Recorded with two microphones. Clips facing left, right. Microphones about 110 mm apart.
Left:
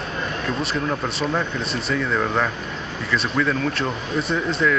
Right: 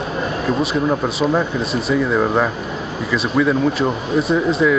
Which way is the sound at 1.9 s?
10° right (ahead or behind).